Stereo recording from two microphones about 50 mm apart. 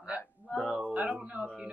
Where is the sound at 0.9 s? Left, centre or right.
Right.